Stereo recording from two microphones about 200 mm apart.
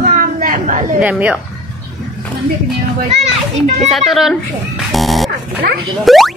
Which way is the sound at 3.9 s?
Centre (ahead or behind).